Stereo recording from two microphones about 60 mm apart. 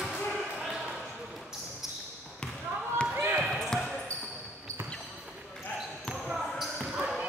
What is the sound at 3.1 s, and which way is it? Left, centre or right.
Basketball bounce, right.